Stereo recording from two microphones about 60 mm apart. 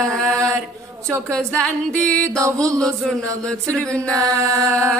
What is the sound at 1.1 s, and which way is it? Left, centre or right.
Speech, right.